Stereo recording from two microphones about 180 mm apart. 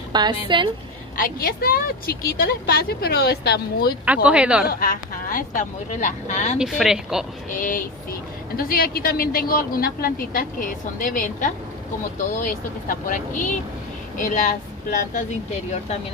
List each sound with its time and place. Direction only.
0.1 s a woman's voice: 25° right (ahead or behind)
1.1 s a woman's voice: 50° left (ahead or behind)
4.0 s speech: 5° right (ahead or behind)
4.6 s speech: 55° left (ahead or behind)
6.6 s speech: 5° right (ahead or behind)
7.5 s a woman's voice: 50° left (ahead or behind)